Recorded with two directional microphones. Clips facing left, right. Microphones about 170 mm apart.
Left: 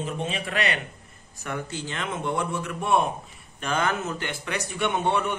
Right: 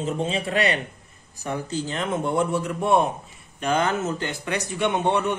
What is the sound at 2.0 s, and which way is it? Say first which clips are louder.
A man's voice: right 4 dB; 20° right (ahead or behind).